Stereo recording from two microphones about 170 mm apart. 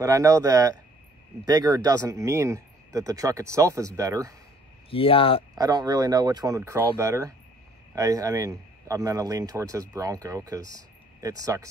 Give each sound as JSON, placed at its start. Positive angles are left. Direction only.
{"t": 0.0, "sound": "a man's voice", "side_deg": -20}
{"t": 4.9, "sound": "speech", "side_deg": 30}
{"t": 5.5, "sound": "a man's voice", "side_deg": -25}